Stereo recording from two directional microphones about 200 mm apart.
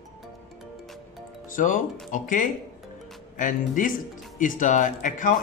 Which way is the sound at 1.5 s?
40° left (ahead or behind).